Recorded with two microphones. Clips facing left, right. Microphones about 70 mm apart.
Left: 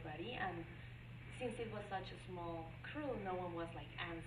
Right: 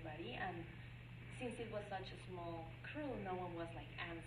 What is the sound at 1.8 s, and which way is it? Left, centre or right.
Speech, left.